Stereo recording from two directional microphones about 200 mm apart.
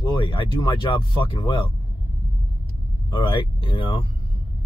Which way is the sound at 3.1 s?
25° left (ahead or behind).